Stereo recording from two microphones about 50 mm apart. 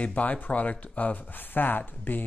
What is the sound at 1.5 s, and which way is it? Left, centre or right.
Speech, left.